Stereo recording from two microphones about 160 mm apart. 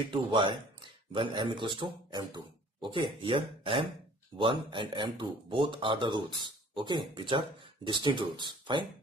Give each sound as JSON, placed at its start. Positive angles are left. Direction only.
{"t": 0.1, "sound": "speech", "side_deg": -30}